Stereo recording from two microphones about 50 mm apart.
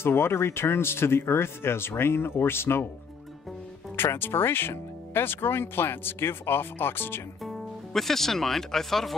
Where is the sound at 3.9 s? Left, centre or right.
Left.